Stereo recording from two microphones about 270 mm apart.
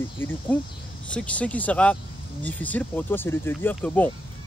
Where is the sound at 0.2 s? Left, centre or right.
Centre.